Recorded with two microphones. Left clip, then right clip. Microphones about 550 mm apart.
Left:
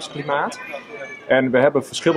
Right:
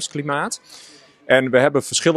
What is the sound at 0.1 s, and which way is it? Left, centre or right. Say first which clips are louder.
Speech: left 3 dB; right.